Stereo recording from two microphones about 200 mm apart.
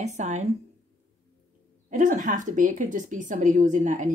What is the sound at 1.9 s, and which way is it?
A woman's voice, 40° right (ahead or behind).